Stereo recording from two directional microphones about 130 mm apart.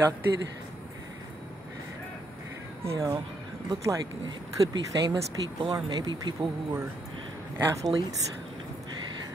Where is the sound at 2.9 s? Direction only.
25° right (ahead or behind).